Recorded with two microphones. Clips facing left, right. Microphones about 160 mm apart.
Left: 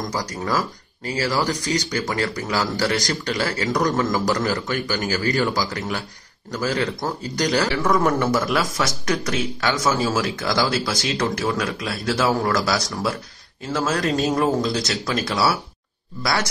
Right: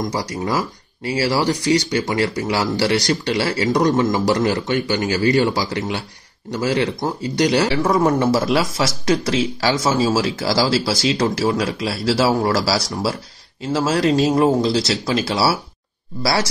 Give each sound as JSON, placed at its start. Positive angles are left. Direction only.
{"t": 0.1, "sound": "speech", "side_deg": -25}